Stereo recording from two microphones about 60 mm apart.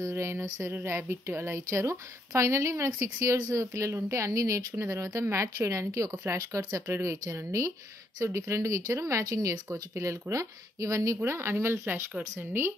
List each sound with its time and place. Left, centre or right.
0.1 s a woman's voice: right
1.9 s a woman's voice: right
5.9 s speech: right
6.7 s a woman's voice: right
11.2 s speech: right